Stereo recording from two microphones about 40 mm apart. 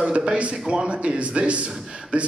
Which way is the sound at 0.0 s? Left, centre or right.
Right.